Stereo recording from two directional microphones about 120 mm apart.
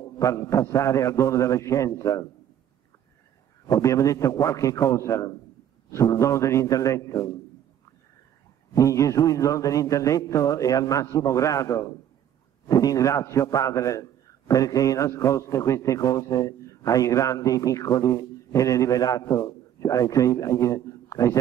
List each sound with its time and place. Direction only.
0.2 s a man's voice: 30° left (ahead or behind)
3.6 s a man's voice: 25° left (ahead or behind)
8.7 s a man's voice: 25° left (ahead or behind)